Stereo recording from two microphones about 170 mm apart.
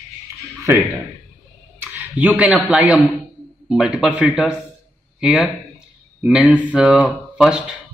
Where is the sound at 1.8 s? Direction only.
10° right (ahead or behind).